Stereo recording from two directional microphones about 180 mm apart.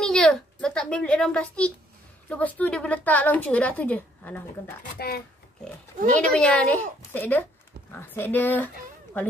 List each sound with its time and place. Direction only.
0.0 s a child's voice: centre (ahead or behind)
4.8 s speech: 60° left (ahead or behind)
6.1 s a woman's voice: 5° left (ahead or behind)